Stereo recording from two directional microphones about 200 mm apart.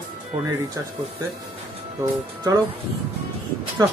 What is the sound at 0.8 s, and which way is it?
Speech, 15° right (ahead or behind).